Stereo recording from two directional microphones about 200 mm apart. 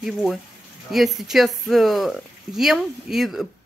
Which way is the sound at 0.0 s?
Centre (ahead or behind).